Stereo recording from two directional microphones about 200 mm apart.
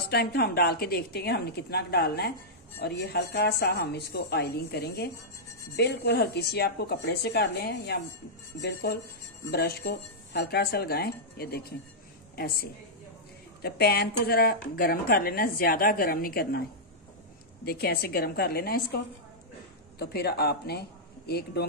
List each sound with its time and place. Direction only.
0.1 s a woman's voice: 55° left (ahead or behind)
17.6 s speech: 50° left (ahead or behind)
20.0 s speech: 55° left (ahead or behind)